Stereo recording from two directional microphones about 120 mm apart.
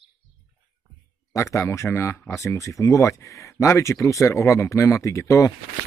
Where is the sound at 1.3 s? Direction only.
25° left (ahead or behind).